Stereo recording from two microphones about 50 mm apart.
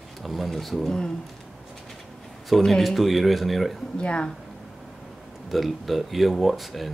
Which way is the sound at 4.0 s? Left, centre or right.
Centre.